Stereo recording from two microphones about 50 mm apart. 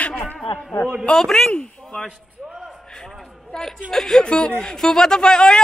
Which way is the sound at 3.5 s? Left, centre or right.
Centre.